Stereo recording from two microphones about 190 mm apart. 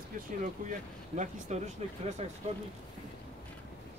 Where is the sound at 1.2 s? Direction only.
35° right (ahead or behind).